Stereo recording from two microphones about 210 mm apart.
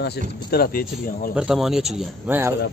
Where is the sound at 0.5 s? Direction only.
45° left (ahead or behind).